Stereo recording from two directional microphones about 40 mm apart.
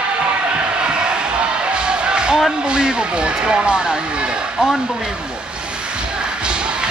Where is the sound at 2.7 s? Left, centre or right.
Right.